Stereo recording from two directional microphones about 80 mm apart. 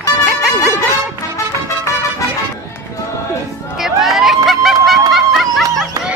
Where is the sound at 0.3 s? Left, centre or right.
Centre.